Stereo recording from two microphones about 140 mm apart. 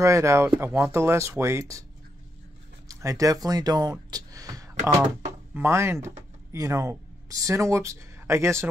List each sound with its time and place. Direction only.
0.0 s speech: 20° right (ahead or behind)
2.9 s speech: 20° right (ahead or behind)
4.1 s a sound: 25° right (ahead or behind)
5.5 s speech: 15° right (ahead or behind)